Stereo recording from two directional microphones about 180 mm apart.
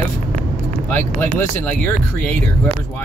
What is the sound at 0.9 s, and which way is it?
Speech, 10° left (ahead or behind).